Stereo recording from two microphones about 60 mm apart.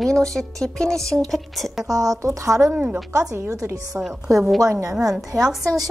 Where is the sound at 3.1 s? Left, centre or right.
Right.